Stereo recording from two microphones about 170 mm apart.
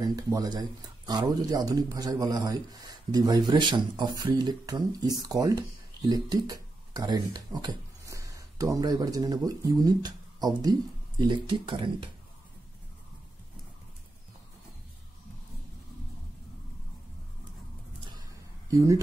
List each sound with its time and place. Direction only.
0.0 s speech: 20° right (ahead or behind)
18.7 s speech: 20° right (ahead or behind)